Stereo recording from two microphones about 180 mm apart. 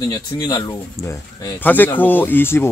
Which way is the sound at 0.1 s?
20° left (ahead or behind).